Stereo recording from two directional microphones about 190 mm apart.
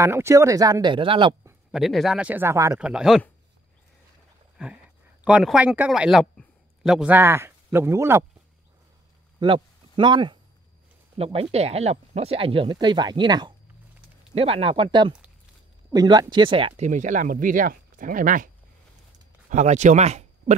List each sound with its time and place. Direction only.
0.0 s speech: 15° right (ahead or behind)
1.7 s speech: centre (ahead or behind)
2.9 s speech: 5° right (ahead or behind)
5.2 s a man's voice: 5° right (ahead or behind)
9.4 s speech: 25° right (ahead or behind); by 18.5 s 45° right (ahead or behind)
19.5 s speech: 40° right (ahead or behind)